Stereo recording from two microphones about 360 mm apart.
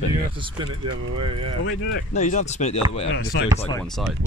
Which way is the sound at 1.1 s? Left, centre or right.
Centre.